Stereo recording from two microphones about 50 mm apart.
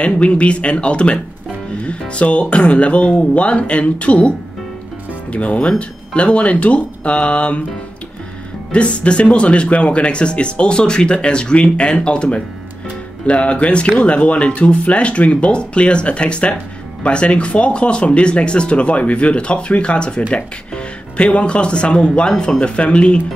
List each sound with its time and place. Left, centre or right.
0.0 s speech: left
8.7 s speech: left